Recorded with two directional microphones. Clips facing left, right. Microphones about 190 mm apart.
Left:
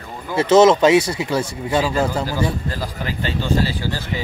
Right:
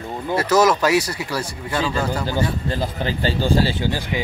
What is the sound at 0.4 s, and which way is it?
Speech, 25° left (ahead or behind).